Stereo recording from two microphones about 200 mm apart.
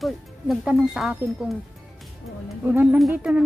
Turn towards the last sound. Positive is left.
turn(degrees=-5)  # may be behind; listen again after turning